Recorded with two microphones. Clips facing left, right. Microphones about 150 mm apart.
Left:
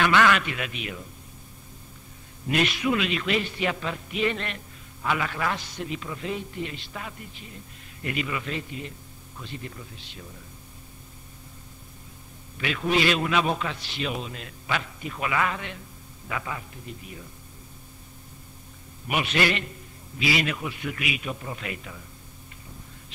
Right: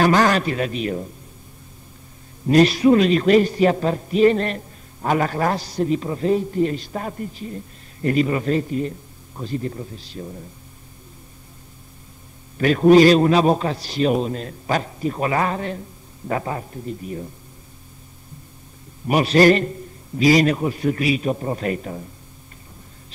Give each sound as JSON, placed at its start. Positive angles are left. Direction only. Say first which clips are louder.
{"t": 0.0, "sound": "a man's voice", "louder": "right 5 dB", "side_deg": -40}
{"t": 2.4, "sound": "a man's voice", "louder": "right 11 dB", "side_deg": -35}
{"t": 12.5, "sound": "a man's voice", "louder": "right 13 dB", "side_deg": -45}
{"t": 19.0, "sound": "a man's voice", "louder": "right 11 dB", "side_deg": -40}